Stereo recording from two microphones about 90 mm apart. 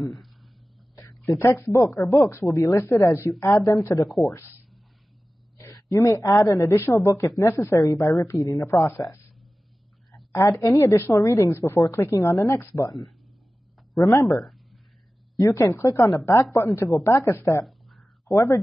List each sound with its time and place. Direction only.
0.1 s a sound: centre (ahead or behind)
1.2 s a woman's voice: 30° left (ahead or behind)
5.9 s a woman's voice: 30° left (ahead or behind)
10.6 s a woman's voice: 35° left (ahead or behind)
14.1 s a woman's voice: 40° left (ahead or behind)
14.4 s a sound: centre (ahead or behind)
15.3 s a woman's voice: 40° left (ahead or behind)
17.6 s a sound: centre (ahead or behind)
18.3 s a woman's voice: 35° left (ahead or behind)